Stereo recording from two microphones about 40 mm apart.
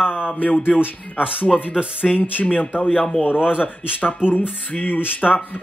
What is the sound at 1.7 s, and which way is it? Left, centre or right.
Speech, centre.